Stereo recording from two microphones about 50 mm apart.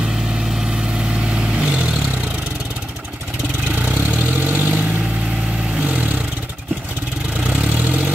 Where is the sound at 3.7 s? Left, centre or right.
Right.